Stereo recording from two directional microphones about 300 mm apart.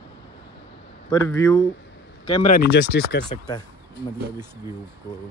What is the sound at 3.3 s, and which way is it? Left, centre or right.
Speech, centre.